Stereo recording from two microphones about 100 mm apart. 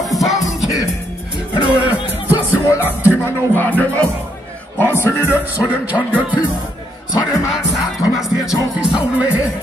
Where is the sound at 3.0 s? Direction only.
20° left (ahead or behind).